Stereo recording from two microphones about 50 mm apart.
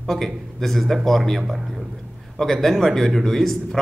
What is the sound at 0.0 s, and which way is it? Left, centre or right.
A man's voice, centre.